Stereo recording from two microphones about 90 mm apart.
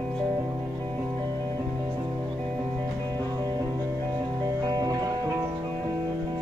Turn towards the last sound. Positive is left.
turn(degrees=-45)  # may be behind; listen again after turning